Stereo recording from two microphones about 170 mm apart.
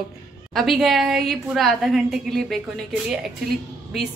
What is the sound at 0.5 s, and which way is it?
A woman's voice, centre (ahead or behind).